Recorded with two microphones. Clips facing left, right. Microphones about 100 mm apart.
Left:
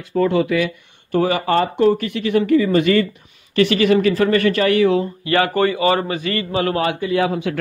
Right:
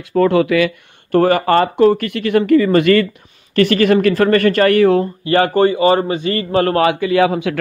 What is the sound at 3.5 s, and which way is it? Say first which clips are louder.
Speech: right 2 dB; 50° right (ahead or behind).